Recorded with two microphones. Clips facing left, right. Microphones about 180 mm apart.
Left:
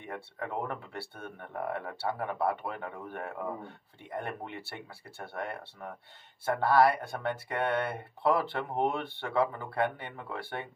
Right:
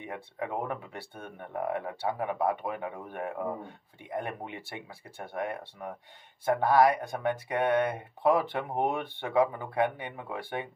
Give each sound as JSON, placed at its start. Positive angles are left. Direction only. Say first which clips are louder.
{"t": 0.0, "sound": "speech", "louder": "right 2 dB", "side_deg": -15}